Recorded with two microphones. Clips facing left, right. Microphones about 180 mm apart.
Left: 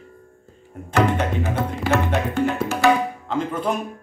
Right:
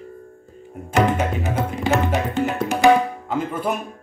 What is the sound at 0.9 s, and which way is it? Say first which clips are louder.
Music: right 1 dB; 15° right (ahead or behind).